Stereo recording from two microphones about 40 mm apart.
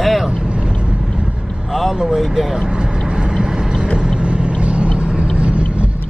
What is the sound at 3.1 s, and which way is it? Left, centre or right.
Vehicle, right.